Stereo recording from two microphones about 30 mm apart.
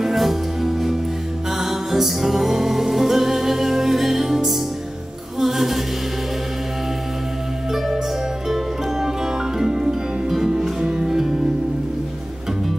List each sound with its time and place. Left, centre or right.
0.1 s music: centre
5.4 s a capella: centre
9.6 s music: centre